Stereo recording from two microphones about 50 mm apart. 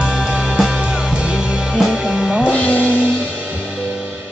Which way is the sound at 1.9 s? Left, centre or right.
Centre.